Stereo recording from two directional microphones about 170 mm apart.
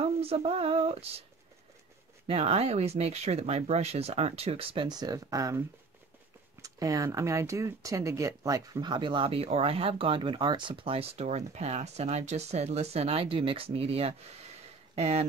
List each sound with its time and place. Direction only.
0.0 s speech: 35° right (ahead or behind)
2.2 s speech: 35° right (ahead or behind)